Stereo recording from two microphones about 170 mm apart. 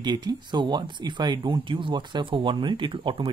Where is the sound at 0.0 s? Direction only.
25° right (ahead or behind).